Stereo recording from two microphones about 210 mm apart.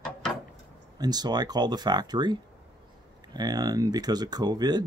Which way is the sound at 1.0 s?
20° right (ahead or behind).